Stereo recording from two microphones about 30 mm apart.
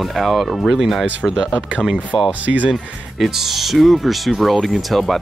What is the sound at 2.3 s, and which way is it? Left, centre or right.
Speech, right.